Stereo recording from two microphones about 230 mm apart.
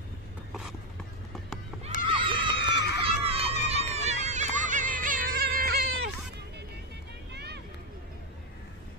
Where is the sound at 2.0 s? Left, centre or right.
Right.